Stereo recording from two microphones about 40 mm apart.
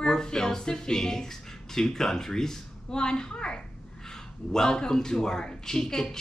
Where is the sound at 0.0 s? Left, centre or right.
Centre.